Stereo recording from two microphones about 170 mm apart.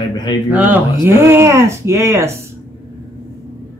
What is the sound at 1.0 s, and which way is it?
A woman's voice, 15° right (ahead or behind).